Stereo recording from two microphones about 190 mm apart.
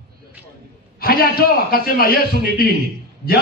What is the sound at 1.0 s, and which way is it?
A man's voice, 50° left (ahead or behind).